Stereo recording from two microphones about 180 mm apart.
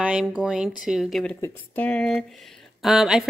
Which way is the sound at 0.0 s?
5° right (ahead or behind).